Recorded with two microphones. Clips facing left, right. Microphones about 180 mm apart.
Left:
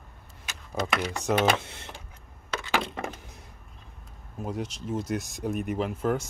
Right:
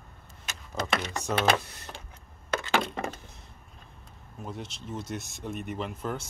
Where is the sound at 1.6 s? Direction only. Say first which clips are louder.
Left 4 dB; 25° left (ahead or behind).